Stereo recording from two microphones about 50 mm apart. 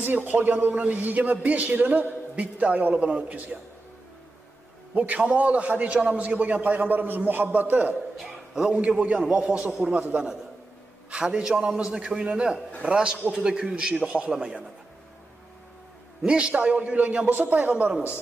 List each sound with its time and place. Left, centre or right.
0.0 s a man's voice: right
4.9 s a man's voice: right
8.2 s a man's voice: centre
8.7 s a man's voice: right
9.9 s a man's voice: right
11.1 s a man's voice: centre
16.2 s a man's voice: centre
17.3 s a man's voice: right